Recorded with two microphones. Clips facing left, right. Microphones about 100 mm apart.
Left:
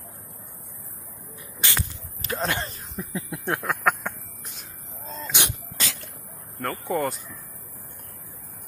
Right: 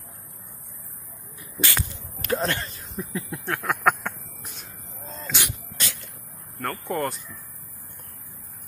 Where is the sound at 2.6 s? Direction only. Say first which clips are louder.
Left 3 dB; 35° left (ahead or behind).